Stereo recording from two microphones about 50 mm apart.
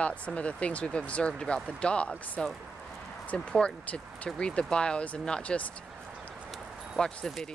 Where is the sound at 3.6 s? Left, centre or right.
Left.